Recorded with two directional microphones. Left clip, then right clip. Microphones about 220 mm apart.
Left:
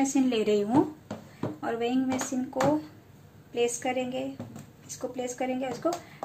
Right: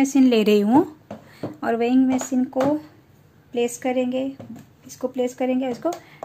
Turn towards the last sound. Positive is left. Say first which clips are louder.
# right 8 dB
turn(degrees=-35)  # may be behind; listen again after turning